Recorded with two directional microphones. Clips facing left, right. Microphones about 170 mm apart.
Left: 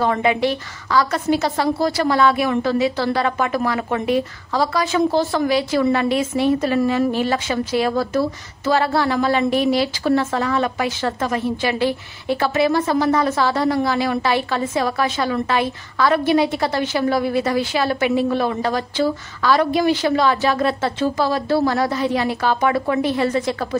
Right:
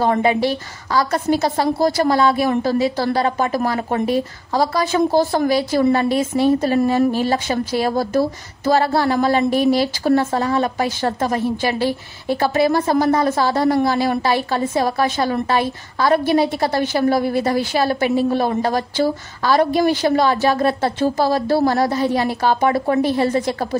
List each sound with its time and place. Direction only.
0.0 s a woman's voice: 35° right (ahead or behind)